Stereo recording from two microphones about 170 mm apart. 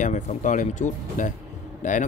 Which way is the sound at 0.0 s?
45° left (ahead or behind).